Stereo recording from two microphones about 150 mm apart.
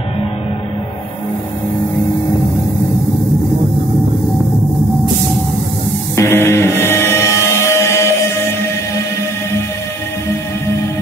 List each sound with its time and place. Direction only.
6.1 s music: 15° left (ahead or behind)